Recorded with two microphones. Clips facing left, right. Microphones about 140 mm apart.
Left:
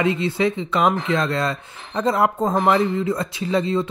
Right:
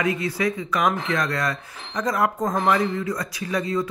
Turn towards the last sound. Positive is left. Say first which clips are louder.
# left 4 dB
turn(degrees=25)  # may be behind; listen again after turning